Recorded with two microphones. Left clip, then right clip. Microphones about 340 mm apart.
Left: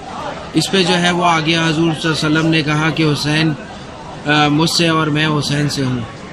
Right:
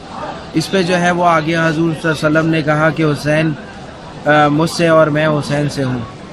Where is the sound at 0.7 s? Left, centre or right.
Centre.